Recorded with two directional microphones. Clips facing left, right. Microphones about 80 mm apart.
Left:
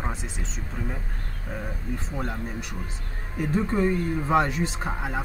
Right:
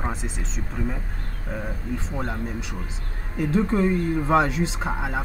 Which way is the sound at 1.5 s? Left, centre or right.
Centre.